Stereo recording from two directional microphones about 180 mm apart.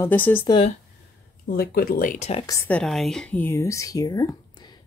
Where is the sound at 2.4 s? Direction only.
15° left (ahead or behind).